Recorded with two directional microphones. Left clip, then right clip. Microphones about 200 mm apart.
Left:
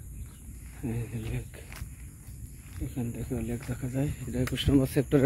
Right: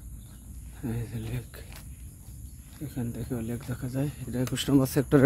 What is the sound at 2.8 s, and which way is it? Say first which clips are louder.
Speech: even; 10° right (ahead or behind).